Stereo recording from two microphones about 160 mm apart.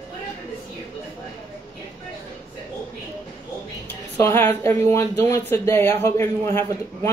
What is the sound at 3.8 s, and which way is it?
A woman's voice, 15° left (ahead or behind).